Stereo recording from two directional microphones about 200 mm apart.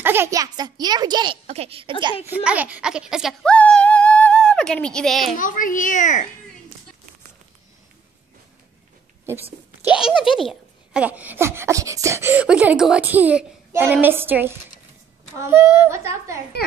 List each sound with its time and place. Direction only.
0.0 s a child's voice: 10° right (ahead or behind)
2.3 s speech: 5° right (ahead or behind)
5.3 s a child's voice: 40° left (ahead or behind)
9.2 s a child's voice: 10° right (ahead or behind)